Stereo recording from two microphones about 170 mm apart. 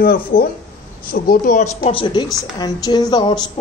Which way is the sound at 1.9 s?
30° left (ahead or behind).